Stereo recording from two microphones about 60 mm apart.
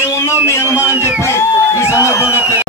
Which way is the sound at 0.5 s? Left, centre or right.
Left.